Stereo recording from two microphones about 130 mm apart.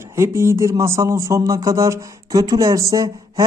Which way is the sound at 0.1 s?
20° right (ahead or behind).